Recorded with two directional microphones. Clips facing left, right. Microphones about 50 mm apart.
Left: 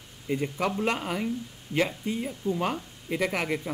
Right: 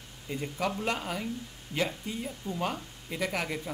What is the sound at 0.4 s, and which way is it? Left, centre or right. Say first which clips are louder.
Speech: left 2 dB; left.